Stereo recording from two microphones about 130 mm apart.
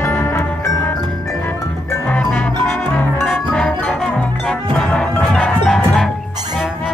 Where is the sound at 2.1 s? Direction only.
10° left (ahead or behind).